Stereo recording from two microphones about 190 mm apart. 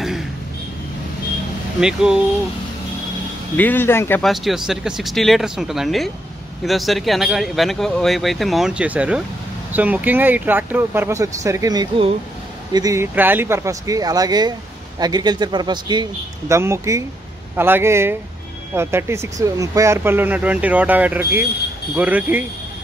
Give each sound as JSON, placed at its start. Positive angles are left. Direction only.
{"t": 1.8, "sound": "speech", "side_deg": -5}
{"t": 3.5, "sound": "speech", "side_deg": 10}
{"t": 4.2, "sound": "a man's voice", "side_deg": 0}